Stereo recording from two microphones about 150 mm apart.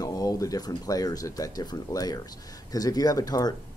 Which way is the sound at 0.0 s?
25° left (ahead or behind).